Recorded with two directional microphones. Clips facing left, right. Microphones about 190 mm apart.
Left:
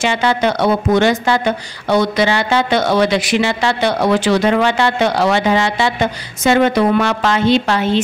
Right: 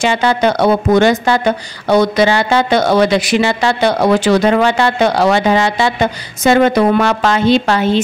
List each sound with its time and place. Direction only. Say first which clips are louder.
0.0 s speech: right 3 dB; 40° right (ahead or behind)